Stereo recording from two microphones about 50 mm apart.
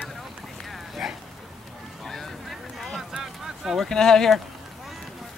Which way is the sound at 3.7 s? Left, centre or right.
Centre.